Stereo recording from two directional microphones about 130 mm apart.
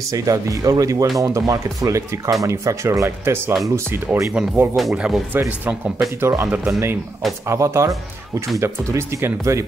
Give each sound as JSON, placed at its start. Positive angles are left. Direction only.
{"t": 0.1, "sound": "speech", "side_deg": -25}
{"t": 4.3, "sound": "speech", "side_deg": -5}
{"t": 6.2, "sound": "speech", "side_deg": -20}